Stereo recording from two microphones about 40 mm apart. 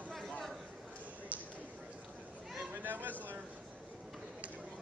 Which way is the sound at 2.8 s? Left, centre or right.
Right.